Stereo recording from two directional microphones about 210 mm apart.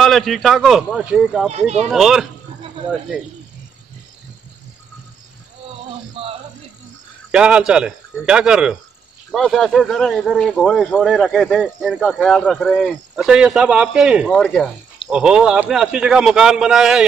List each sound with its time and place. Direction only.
0.0 s speech: centre (ahead or behind)
1.5 s speech: 30° right (ahead or behind)
1.9 s speech: centre (ahead or behind)
6.2 s music: 30° right (ahead or behind)
7.2 s speech: 5° right (ahead or behind)